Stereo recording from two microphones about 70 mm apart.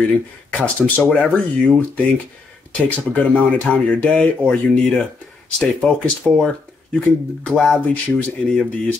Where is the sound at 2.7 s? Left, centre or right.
Left.